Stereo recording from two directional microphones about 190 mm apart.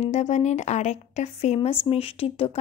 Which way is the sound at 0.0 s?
35° left (ahead or behind).